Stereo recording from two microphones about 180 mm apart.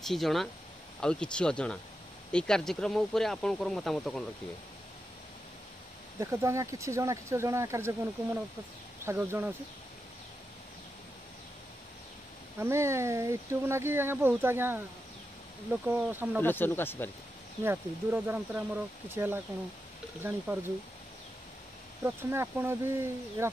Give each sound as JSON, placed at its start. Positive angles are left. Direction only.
{"t": 0.0, "sound": "speech", "side_deg": 0}
{"t": 6.1, "sound": "speech", "side_deg": -15}
{"t": 9.0, "sound": "speech", "side_deg": -15}
{"t": 12.5, "sound": "speech", "side_deg": -15}
{"t": 16.4, "sound": "speech", "side_deg": 10}
{"t": 17.6, "sound": "speech", "side_deg": -10}
{"t": 22.0, "sound": "speech", "side_deg": -15}